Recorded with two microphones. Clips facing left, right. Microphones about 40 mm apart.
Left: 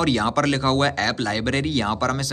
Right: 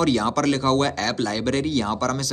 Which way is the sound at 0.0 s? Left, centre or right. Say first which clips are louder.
Even; left.